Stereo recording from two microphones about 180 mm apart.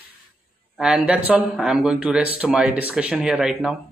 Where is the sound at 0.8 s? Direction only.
5° right (ahead or behind).